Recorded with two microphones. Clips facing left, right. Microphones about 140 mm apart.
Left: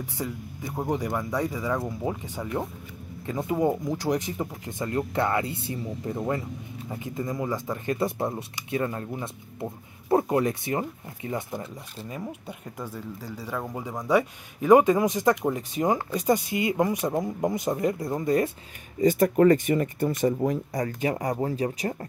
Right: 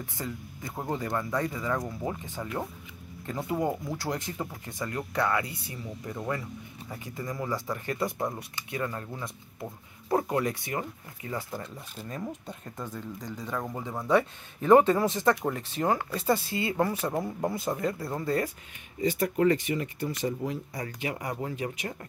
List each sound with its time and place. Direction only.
0.0 s speech: 15° left (ahead or behind)
12.1 s speech: 10° left (ahead or behind)
18.9 s speech: 45° left (ahead or behind)